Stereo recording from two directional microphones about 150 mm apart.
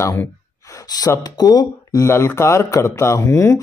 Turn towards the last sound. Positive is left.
turn(degrees=15)  # may be behind; listen again after turning